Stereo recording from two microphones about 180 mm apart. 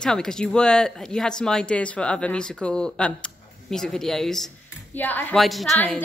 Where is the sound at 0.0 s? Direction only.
5° left (ahead or behind).